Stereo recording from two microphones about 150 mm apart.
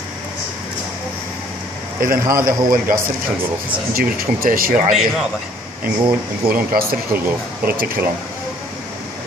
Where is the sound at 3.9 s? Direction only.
80° right.